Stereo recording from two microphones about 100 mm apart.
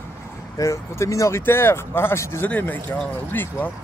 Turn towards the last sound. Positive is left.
turn(degrees=20)  # may be behind; listen again after turning